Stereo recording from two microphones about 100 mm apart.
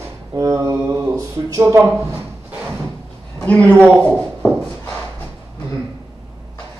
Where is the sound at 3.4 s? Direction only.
15° left (ahead or behind).